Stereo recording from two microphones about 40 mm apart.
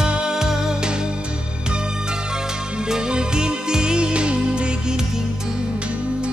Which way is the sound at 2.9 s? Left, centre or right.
Right.